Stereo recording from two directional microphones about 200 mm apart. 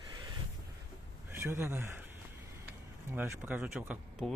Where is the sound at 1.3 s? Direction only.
10° right (ahead or behind).